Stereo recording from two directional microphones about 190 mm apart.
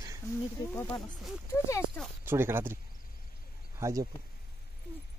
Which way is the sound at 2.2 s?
10° right (ahead or behind).